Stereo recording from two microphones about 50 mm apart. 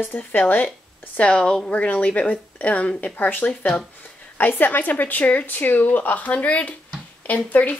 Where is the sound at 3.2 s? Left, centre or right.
Left.